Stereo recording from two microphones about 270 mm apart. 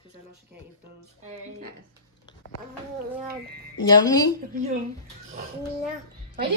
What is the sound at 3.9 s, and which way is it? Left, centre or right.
Speech, centre.